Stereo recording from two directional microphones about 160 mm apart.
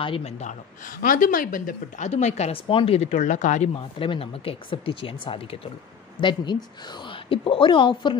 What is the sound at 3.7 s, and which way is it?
A woman's voice, 30° left (ahead or behind).